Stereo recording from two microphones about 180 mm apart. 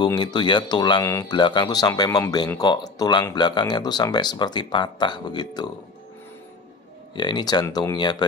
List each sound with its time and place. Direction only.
0.0 s speech: 25° left (ahead or behind)
7.2 s speech: 25° left (ahead or behind)